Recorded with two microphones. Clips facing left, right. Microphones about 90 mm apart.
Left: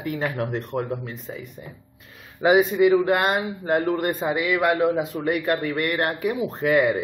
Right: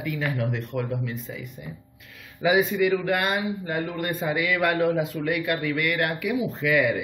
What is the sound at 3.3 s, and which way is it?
Speech, 45° left (ahead or behind).